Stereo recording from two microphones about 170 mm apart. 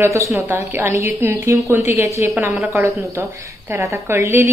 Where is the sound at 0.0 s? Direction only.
15° right (ahead or behind).